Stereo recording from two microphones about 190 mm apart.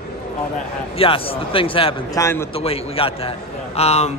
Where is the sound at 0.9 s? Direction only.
30° left (ahead or behind).